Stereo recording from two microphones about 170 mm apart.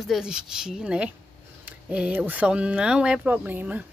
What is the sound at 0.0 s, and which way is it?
Speech, 5° right (ahead or behind).